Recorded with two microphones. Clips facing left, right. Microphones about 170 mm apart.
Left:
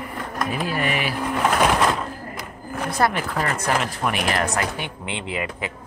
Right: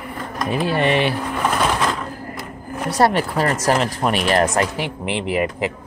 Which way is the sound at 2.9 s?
30° right (ahead or behind).